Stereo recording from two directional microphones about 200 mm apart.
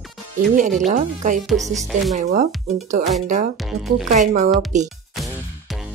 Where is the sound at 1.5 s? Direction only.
Centre (ahead or behind).